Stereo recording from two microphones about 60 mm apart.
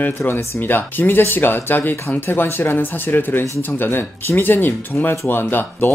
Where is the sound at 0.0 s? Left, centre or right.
Left.